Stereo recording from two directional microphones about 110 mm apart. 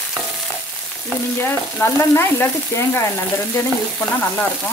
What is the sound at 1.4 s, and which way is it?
Frying, 20° left (ahead or behind).